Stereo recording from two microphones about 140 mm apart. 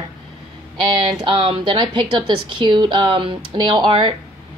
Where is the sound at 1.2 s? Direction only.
35° right (ahead or behind).